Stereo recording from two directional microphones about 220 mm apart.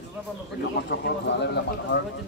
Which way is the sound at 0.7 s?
50° left (ahead or behind).